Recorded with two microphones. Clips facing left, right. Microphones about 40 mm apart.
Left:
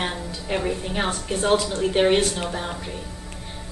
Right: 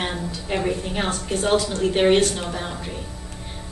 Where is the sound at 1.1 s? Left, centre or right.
Centre.